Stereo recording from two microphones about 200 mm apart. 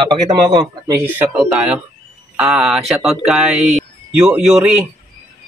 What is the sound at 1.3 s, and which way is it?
Speech, 5° right (ahead or behind).